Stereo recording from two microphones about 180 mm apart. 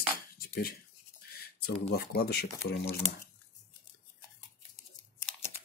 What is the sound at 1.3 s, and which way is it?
Speech, 60° left (ahead or behind).